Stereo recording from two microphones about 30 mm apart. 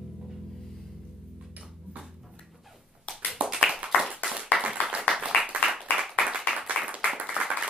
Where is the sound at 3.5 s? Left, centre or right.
Right.